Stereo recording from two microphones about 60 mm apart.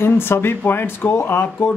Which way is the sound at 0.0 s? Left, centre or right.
Left.